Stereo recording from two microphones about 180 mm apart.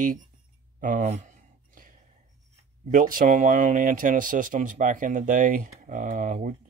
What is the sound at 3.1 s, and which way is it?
Speech, 45° right (ahead or behind).